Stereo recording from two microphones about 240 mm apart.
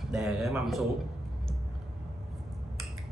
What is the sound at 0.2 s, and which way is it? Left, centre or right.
Speech, centre.